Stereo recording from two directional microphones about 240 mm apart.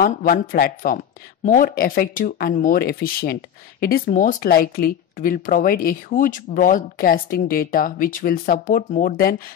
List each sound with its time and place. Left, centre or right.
0.0 s speech: left